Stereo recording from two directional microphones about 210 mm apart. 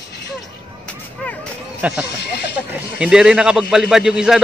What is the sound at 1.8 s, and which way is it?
Speech, 5° right (ahead or behind).